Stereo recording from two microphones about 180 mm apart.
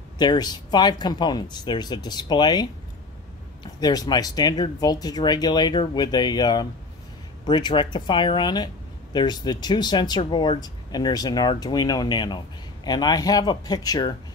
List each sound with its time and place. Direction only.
0.2 s speech: 25° left (ahead or behind)